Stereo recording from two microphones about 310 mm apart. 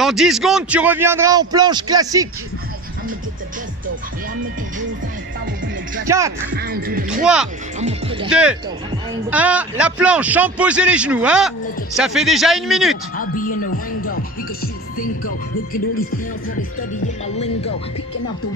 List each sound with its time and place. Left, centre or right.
0.0 s a man's voice: centre
6.0 s a man's voice: centre
6.5 s music: right
7.8 s a man's voice: centre
8.3 s a man's voice: centre